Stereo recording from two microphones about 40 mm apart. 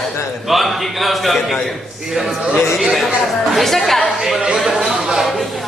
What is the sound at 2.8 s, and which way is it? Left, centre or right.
A woman's voice, centre.